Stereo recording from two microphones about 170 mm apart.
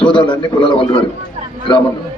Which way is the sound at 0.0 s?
30° left (ahead or behind).